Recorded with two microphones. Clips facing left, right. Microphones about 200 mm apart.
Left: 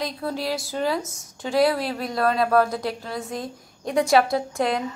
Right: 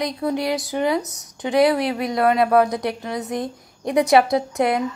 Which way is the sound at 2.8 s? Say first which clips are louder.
Right 3 dB; 70° right (ahead or behind).